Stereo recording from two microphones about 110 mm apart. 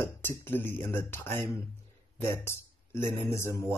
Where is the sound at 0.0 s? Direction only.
20° left (ahead or behind).